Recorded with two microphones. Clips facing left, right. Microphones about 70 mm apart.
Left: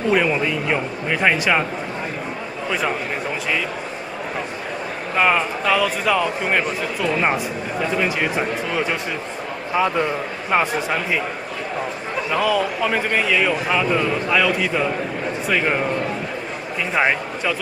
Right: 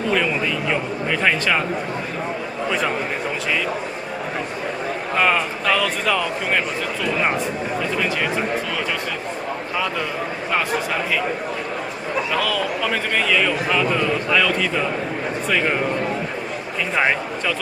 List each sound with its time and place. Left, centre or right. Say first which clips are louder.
0.1 s a man's voice: left 3 dB; centre
5.1 s a man's voice: left 1 dB; centre
12.3 s a man's voice: left 5 dB; centre
16.9 s speech: left 1 dB; centre